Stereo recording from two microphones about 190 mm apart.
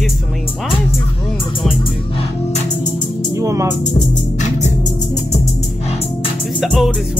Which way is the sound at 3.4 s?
15° right (ahead or behind).